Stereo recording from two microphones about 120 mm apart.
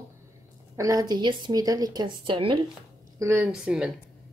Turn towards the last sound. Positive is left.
turn(degrees=-5)  # may be behind; listen again after turning